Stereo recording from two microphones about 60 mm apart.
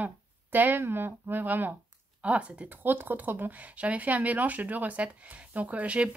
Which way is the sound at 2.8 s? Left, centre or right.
Right.